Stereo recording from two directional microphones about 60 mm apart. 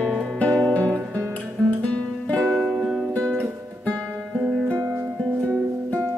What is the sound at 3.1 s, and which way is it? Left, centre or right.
Music, left.